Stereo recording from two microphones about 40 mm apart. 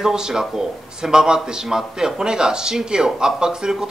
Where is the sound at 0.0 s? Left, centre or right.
Centre.